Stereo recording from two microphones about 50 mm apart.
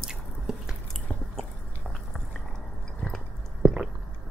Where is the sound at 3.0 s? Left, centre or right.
Centre.